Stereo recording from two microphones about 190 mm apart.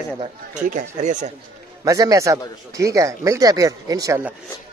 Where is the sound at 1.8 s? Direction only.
20° right (ahead or behind).